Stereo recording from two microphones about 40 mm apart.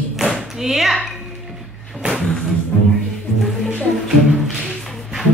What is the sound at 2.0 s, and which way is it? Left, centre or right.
Music, right.